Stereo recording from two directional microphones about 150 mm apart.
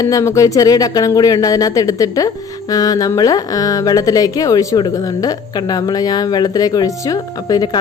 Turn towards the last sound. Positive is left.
turn(degrees=25)  # may be behind; listen again after turning